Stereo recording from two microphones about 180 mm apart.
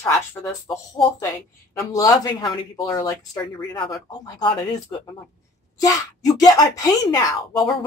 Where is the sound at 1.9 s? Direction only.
20° left (ahead or behind).